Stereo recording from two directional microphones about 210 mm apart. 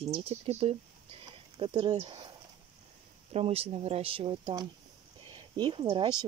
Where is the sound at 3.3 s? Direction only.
30° right (ahead or behind).